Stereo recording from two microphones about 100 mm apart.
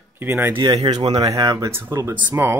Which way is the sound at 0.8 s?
45° right (ahead or behind).